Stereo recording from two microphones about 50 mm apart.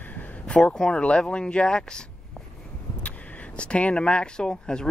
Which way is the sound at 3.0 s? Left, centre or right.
Left.